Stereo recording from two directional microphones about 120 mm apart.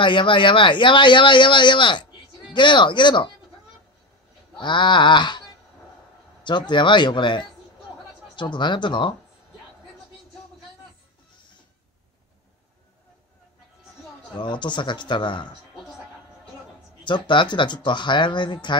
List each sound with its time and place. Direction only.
0.0 s speech: 45° left (ahead or behind)
4.6 s speech: 40° left (ahead or behind)
6.4 s speech: 40° left (ahead or behind)
14.3 s speech: 40° left (ahead or behind)
17.0 s speech: 40° left (ahead or behind)